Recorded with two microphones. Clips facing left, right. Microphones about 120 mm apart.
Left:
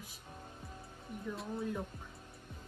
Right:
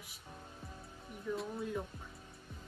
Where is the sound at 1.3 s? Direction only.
Centre (ahead or behind).